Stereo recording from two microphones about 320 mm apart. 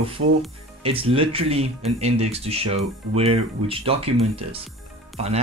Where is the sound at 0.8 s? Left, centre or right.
Centre.